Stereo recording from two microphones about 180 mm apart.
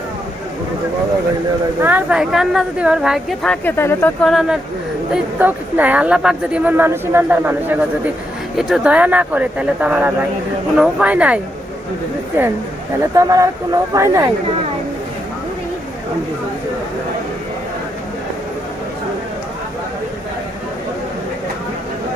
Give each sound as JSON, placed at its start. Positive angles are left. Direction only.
{"t": 1.8, "sound": "speech", "side_deg": -10}
{"t": 3.6, "sound": "speech", "side_deg": 15}
{"t": 4.2, "sound": "speech", "side_deg": 0}
{"t": 13.0, "sound": "speech", "side_deg": -20}